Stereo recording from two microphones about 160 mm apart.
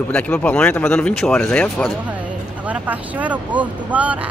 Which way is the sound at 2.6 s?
10° right (ahead or behind).